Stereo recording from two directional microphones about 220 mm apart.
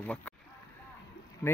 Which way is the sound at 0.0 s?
5° left (ahead or behind).